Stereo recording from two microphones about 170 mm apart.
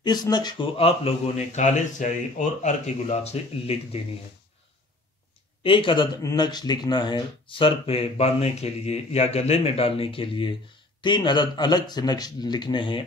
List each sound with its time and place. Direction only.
0.0 s speech: 25° left (ahead or behind)
5.6 s speech: 30° left (ahead or behind)